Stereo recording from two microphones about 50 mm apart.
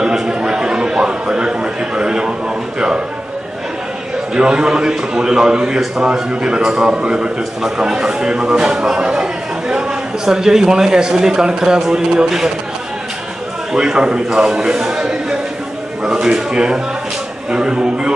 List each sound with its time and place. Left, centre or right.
0.0 s a sound: centre
4.3 s a man's voice: centre
13.7 s a man's voice: centre